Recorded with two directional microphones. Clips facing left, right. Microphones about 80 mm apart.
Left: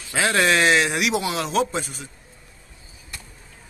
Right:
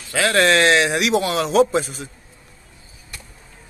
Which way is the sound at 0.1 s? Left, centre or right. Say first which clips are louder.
Right 2 dB; centre.